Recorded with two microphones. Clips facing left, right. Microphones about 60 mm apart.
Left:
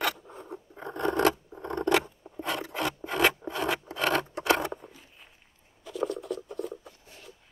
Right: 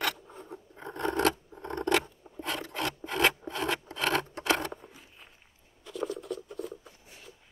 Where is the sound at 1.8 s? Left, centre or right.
Centre.